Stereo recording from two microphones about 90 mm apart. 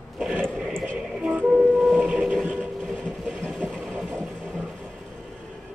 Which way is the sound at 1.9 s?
10° right (ahead or behind).